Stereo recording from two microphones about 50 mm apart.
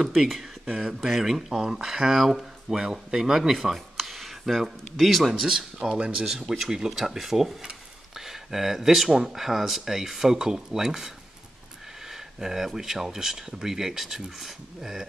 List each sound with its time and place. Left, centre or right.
0.0 s speech: centre